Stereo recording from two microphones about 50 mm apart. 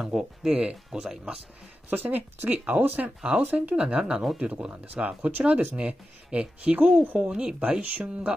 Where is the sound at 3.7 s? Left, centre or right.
Right.